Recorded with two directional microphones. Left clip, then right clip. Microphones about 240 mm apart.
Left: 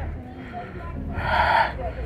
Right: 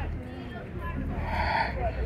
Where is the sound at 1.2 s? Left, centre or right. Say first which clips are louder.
Left 9 dB; left.